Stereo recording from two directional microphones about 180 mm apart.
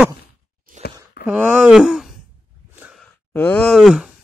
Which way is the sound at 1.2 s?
10° right (ahead or behind).